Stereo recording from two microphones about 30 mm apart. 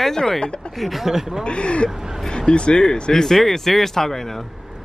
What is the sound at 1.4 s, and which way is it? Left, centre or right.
Speech, left.